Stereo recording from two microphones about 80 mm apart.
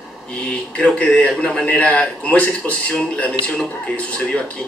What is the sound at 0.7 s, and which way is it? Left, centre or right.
A man's voice, centre.